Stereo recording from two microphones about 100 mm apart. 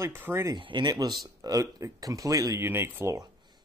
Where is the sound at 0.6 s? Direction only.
50° right (ahead or behind); by 3.2 s 25° right (ahead or behind).